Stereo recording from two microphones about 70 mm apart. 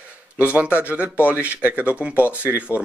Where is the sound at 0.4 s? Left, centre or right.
Right.